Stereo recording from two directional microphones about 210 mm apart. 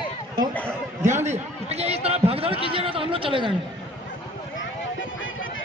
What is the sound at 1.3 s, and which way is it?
Chatter, 30° right (ahead or behind).